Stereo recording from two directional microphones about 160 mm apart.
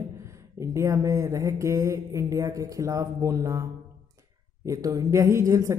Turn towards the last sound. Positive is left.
turn(degrees=-20)  # may be behind; listen again after turning